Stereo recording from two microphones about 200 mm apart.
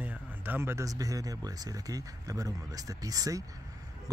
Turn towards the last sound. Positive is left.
turn(degrees=-15)  # may be behind; listen again after turning